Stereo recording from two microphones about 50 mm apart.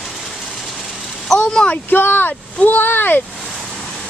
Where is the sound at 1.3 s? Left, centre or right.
Centre.